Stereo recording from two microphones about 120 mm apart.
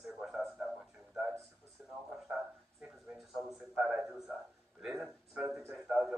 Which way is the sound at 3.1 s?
5° right (ahead or behind).